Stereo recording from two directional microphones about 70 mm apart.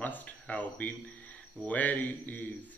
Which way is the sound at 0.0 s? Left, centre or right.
Left.